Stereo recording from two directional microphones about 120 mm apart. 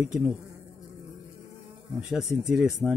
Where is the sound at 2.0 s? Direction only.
5° right (ahead or behind).